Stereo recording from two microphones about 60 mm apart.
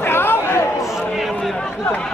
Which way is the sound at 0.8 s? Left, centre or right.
Centre.